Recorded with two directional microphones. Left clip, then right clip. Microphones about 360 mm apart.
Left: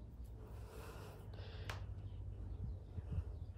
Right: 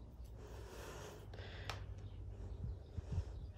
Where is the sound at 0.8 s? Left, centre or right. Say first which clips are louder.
Right 3 dB; right.